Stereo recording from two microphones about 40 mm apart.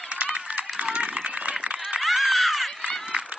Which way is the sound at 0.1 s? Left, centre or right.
Right.